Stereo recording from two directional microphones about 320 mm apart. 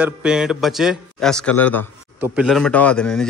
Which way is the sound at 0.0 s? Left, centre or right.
Centre.